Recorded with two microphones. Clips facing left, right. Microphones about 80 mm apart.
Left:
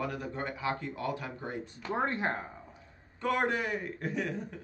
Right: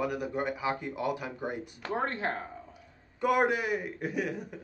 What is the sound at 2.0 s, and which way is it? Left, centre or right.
Speech, centre.